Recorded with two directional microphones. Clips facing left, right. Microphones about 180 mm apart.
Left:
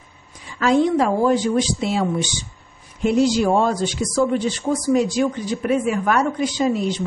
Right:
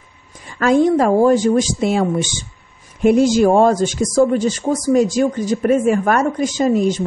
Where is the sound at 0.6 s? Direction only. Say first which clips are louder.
Right 3 dB; 50° right (ahead or behind).